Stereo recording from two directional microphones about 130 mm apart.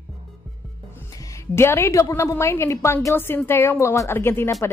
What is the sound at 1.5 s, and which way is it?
A woman's voice, 20° left (ahead or behind).